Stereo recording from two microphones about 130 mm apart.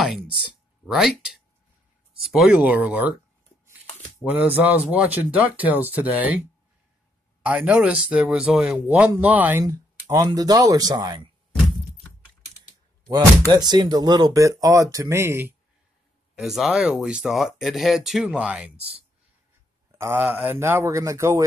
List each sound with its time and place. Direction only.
0.0 s speech: 5° right (ahead or behind)
4.2 s speech: 10° right (ahead or behind)
7.4 s speech: 10° right (ahead or behind); by 11.2 s 30° right (ahead or behind)
13.5 s speech: 35° right (ahead or behind)
16.3 s speech: centre (ahead or behind)
18.8 s speech: 50° right (ahead or behind)
19.9 s speech: 20° right (ahead or behind)